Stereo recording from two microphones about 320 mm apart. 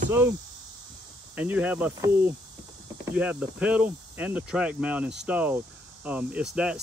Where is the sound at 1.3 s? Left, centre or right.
Centre.